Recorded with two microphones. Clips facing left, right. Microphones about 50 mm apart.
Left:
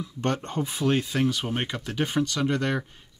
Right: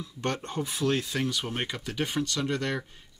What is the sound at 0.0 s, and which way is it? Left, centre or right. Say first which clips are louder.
Speech: left 4 dB; left.